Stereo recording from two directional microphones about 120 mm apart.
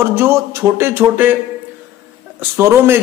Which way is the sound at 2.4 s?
20° right (ahead or behind).